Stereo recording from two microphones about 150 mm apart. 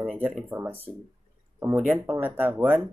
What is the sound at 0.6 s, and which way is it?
Speech, 15° right (ahead or behind).